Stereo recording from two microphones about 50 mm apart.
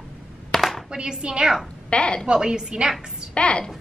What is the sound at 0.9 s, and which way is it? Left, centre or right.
Speech, centre.